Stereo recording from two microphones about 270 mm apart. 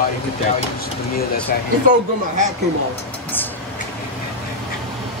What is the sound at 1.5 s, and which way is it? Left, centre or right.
Speech, left.